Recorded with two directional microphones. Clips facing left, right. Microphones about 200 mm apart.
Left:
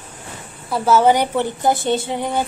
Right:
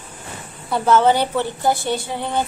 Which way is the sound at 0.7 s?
5° left (ahead or behind).